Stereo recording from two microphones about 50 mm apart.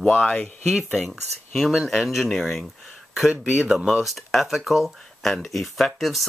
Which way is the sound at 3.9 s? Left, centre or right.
Centre.